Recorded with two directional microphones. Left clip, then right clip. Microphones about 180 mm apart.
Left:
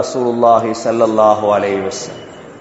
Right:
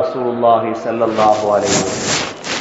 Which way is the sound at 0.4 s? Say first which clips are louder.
Left 2 dB; 55° left (ahead or behind).